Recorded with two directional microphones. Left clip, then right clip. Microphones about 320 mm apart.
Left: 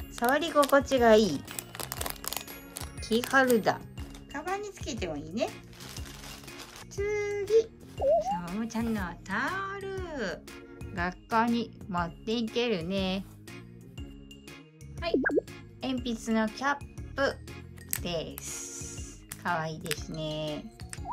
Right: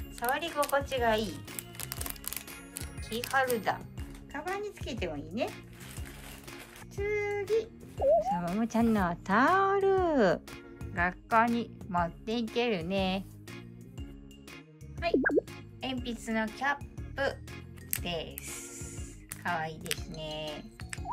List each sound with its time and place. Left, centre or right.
0.3 s speech: centre
2.8 s speech: centre
4.3 s speech: centre
7.0 s a child's voice: centre
11.0 s a child's voice: centre
15.0 s music: centre
18.0 s speech: centre